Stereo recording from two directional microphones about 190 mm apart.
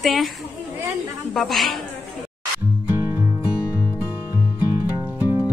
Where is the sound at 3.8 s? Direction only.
20° left (ahead or behind).